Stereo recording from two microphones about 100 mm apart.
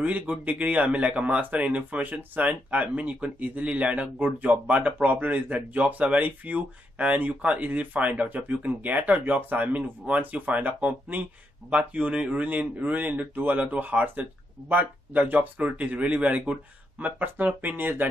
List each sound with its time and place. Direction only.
0.0 s speech: 15° right (ahead or behind)